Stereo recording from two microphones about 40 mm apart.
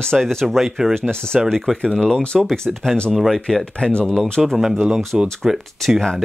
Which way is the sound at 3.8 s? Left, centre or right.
Left.